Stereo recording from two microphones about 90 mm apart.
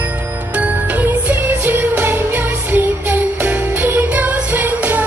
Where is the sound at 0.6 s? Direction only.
15° right (ahead or behind).